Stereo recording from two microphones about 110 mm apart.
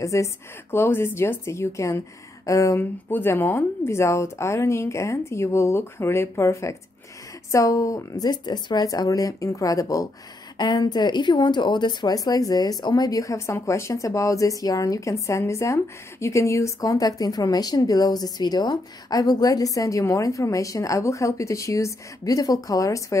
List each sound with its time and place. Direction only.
0.0 s a woman's voice: 30° left (ahead or behind)